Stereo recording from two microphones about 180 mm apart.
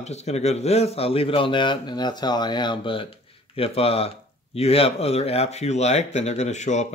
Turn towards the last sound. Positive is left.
turn(degrees=40)  # may be behind; listen again after turning